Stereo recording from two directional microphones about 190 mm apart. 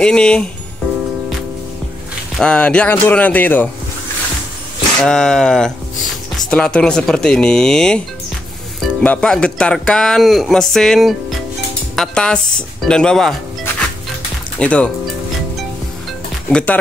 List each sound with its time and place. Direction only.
0.0 s speech: 5° left (ahead or behind)
2.3 s speech: 5° left (ahead or behind)
5.0 s speech: 5° left (ahead or behind)
14.6 s speech: 5° left (ahead or behind)
16.4 s speech: 5° left (ahead or behind)